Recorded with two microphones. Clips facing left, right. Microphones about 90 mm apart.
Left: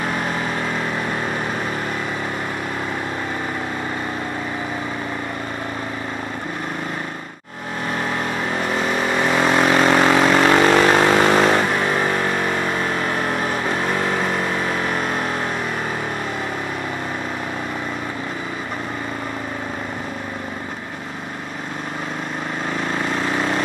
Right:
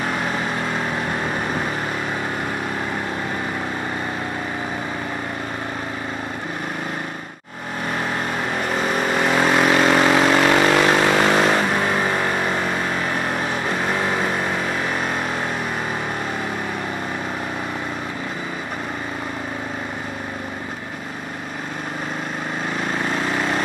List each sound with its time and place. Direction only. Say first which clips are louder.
9.4 s vehicle: left 1 dB; 40° left (ahead or behind)